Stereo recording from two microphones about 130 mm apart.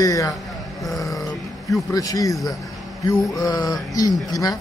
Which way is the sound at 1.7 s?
25° left (ahead or behind).